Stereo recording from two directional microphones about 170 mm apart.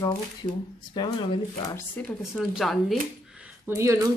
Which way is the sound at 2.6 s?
Centre (ahead or behind).